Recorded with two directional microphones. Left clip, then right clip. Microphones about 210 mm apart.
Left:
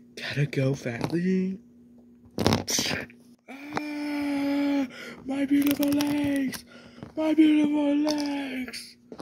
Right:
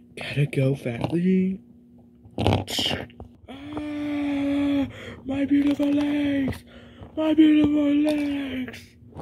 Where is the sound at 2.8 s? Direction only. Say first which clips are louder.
Right 3 dB; centre (ahead or behind).